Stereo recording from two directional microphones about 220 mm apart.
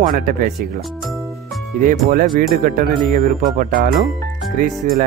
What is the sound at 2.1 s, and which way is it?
Speech, 40° right (ahead or behind).